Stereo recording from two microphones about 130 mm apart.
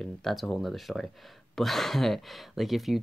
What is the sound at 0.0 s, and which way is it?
Speech, centre (ahead or behind).